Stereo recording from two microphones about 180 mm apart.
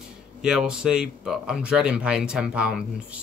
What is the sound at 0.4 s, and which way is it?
Speech, 5° right (ahead or behind).